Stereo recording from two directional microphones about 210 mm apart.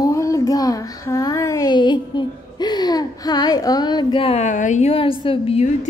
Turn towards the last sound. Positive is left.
turn(degrees=30)  # may be behind; listen again after turning